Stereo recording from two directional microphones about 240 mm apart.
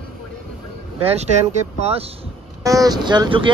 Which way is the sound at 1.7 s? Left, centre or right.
Right.